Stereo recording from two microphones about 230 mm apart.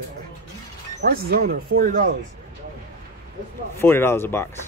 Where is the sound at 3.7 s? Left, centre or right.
Centre.